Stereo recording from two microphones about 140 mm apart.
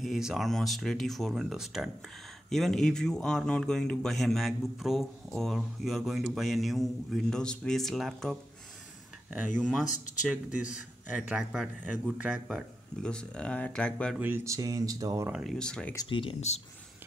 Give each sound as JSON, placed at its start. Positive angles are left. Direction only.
{"t": 0.0, "sound": "speech", "side_deg": 0}
{"t": 9.6, "sound": "speech", "side_deg": 5}
{"t": 11.1, "sound": "speech", "side_deg": -10}
{"t": 14.1, "sound": "speech", "side_deg": -15}
{"t": 15.3, "sound": "speech", "side_deg": 0}
{"t": 16.1, "sound": "speech", "side_deg": 40}